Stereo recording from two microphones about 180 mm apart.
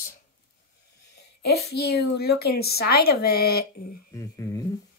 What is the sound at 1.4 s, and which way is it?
A woman's voice, 65° left (ahead or behind).